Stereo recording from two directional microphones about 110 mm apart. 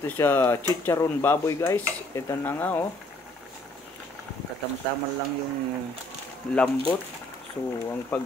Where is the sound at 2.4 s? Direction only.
15° left (ahead or behind).